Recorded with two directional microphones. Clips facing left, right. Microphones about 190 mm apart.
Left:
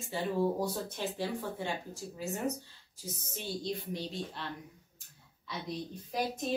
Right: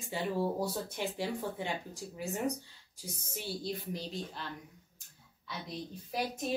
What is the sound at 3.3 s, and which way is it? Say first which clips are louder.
A woman's voice: left 1 dB; centre (ahead or behind).